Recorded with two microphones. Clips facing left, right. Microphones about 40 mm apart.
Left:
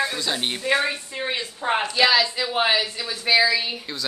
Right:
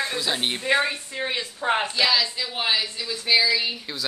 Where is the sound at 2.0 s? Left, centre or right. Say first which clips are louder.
Left 7 dB; left.